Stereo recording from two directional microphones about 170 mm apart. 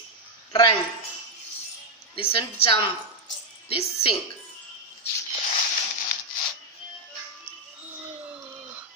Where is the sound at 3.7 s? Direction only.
35° left (ahead or behind).